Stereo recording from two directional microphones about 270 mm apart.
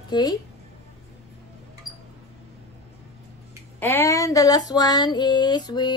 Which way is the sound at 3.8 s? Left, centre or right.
Centre.